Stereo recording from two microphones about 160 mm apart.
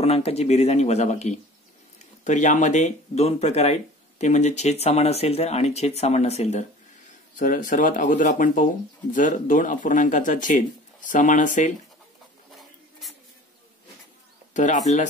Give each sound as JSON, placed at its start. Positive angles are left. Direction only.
{"t": 0.0, "sound": "speech", "side_deg": 40}
{"t": 7.3, "sound": "speech", "side_deg": 55}
{"t": 14.5, "sound": "speech", "side_deg": 50}